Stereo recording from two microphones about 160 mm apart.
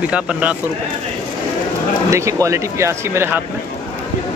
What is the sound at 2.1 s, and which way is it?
Speech, 20° right (ahead or behind).